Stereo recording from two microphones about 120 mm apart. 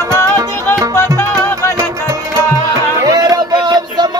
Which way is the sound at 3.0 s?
30° right (ahead or behind).